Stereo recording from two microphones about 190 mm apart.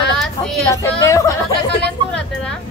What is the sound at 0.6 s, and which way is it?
Speech, 15° left (ahead or behind).